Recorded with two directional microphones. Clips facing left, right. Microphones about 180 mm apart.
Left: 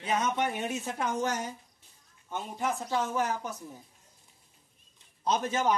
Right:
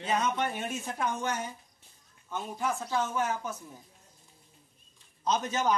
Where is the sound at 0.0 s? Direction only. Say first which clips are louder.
Even; 15° left (ahead or behind).